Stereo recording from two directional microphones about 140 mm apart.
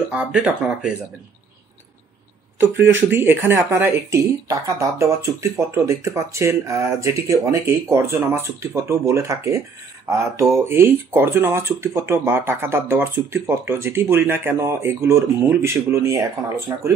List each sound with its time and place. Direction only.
0.1 s speech: 5° right (ahead or behind)
2.6 s speech: 15° right (ahead or behind)